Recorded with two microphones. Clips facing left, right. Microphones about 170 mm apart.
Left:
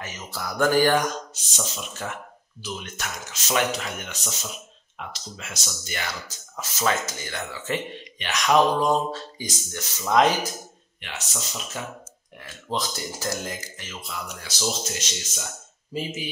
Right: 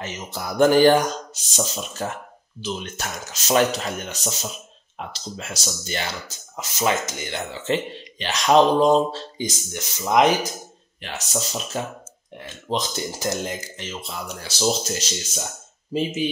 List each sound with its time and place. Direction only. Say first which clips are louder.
0.0 s speech: right 3 dB; 20° right (ahead or behind)
11.0 s speech: right 7 dB; 35° right (ahead or behind)
12.4 s speech: right 3 dB; 20° right (ahead or behind)
15.9 s speech: right 7 dB; 20° right (ahead or behind)